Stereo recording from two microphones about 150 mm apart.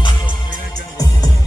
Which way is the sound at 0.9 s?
25° left (ahead or behind).